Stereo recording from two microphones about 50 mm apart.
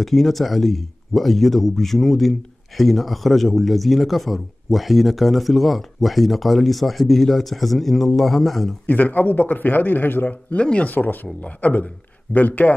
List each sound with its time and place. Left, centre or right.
0.0 s speech: centre
8.8 s a man's voice: left
10.6 s speech: left
10.9 s a man's voice: left